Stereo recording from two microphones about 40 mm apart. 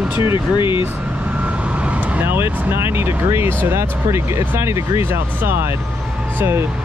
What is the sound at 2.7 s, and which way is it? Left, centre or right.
Speech, right.